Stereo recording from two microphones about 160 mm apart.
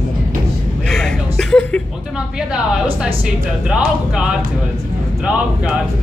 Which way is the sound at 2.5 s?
5° right (ahead or behind).